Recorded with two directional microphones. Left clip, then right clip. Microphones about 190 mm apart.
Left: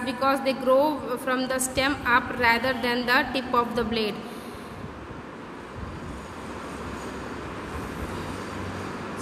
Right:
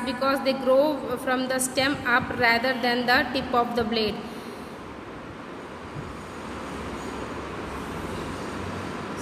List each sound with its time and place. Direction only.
0.0 s a woman's voice: 5° left (ahead or behind)